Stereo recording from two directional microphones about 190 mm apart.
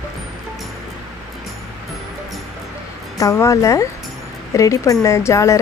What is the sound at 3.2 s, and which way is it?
Speech, 15° left (ahead or behind).